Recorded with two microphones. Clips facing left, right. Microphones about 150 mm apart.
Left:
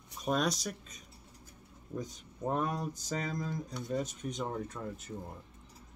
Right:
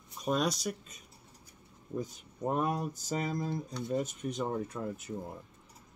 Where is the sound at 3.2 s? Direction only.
30° right (ahead or behind).